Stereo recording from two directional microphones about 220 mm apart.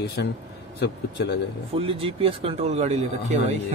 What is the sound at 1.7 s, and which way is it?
Speech, 25° right (ahead or behind).